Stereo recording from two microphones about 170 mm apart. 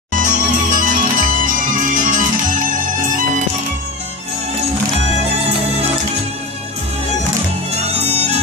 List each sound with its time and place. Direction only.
0.1 s music: 50° right (ahead or behind)
7.7 s music: 40° right (ahead or behind)